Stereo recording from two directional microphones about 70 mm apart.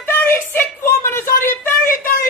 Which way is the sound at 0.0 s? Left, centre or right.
Left.